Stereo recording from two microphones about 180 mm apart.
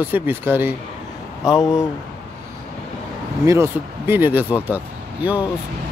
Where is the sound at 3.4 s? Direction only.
15° right (ahead or behind).